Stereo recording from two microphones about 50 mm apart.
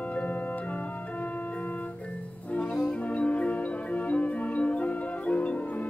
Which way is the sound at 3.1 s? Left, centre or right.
Left.